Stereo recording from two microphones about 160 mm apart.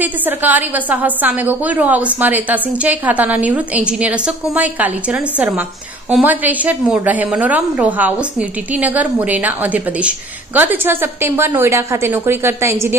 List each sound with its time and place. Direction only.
0.0 s a woman's voice: 10° right (ahead or behind)
6.0 s a woman's voice: 10° right (ahead or behind)